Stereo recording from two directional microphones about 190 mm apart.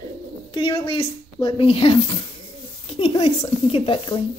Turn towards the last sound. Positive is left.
turn(degrees=25)  # may be behind; listen again after turning